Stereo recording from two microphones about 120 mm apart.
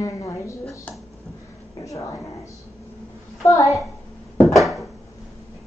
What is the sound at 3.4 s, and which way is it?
Speech, 25° left (ahead or behind).